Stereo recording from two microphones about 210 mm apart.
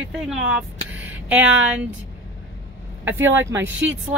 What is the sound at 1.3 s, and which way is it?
Speech, 5° right (ahead or behind).